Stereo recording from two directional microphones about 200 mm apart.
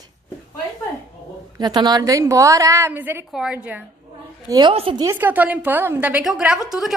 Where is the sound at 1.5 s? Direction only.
20° right (ahead or behind).